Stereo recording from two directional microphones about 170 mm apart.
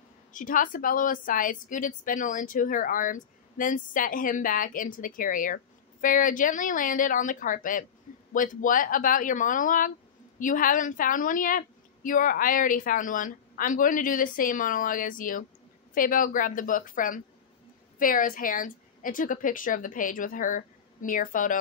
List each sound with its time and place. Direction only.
0.3 s a woman's voice: 50° left (ahead or behind)